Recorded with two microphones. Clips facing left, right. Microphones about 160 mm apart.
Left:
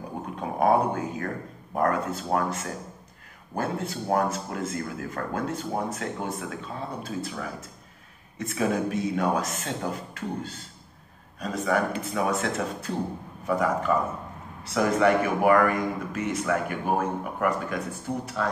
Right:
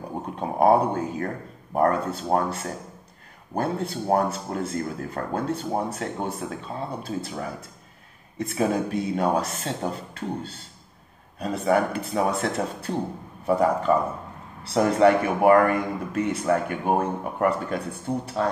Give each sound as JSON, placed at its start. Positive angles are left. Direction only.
{"t": 0.4, "sound": "a man's voice", "side_deg": -30}